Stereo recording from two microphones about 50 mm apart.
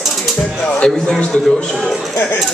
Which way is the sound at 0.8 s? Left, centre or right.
Left.